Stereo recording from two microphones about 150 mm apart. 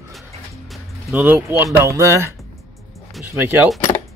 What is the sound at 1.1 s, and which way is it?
Speech, 15° right (ahead or behind).